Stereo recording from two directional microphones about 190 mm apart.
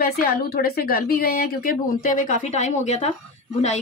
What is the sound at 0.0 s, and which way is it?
A woman's voice, 50° left (ahead or behind).